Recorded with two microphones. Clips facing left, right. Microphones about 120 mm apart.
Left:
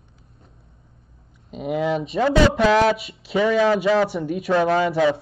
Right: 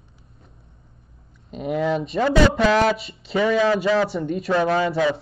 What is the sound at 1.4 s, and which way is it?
Speech, centre (ahead or behind).